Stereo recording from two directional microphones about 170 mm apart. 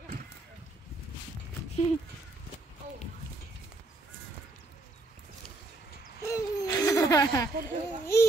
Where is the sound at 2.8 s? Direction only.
45° right (ahead or behind).